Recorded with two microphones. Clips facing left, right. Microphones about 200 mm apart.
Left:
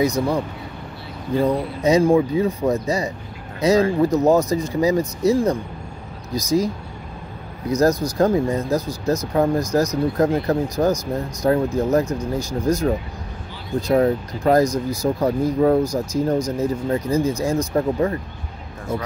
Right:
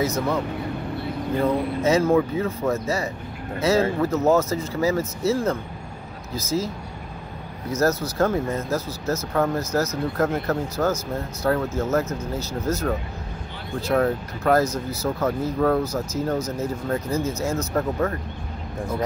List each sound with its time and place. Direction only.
0.0 s speech: 15° left (ahead or behind)
1.8 s speech: 15° left (ahead or behind)
7.7 s speech: 15° left (ahead or behind)